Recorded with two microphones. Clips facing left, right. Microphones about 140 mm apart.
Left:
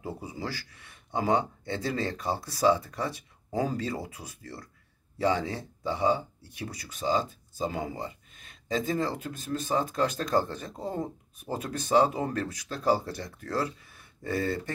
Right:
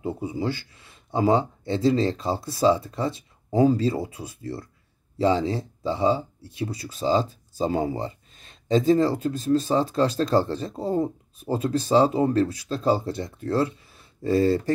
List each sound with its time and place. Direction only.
0.0 s speech: 25° right (ahead or behind)